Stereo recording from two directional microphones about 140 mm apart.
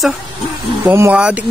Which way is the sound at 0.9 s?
15° right (ahead or behind).